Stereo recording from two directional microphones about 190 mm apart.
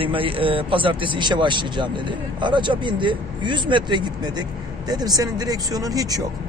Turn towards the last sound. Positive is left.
turn(degrees=-20)  # may be behind; listen again after turning